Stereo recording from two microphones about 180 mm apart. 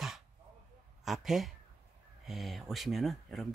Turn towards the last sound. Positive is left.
turn(degrees=0)  # may be behind; listen again after turning